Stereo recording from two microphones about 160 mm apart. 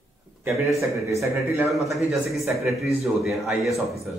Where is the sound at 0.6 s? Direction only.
20° right (ahead or behind).